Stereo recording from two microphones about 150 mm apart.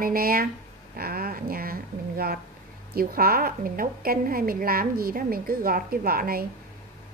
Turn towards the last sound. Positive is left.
turn(degrees=-85)